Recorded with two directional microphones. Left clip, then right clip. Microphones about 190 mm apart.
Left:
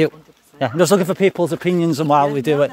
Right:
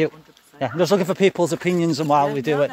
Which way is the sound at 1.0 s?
Centre (ahead or behind).